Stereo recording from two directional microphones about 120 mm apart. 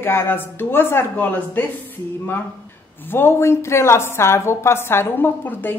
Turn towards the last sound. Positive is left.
turn(degrees=15)  # may be behind; listen again after turning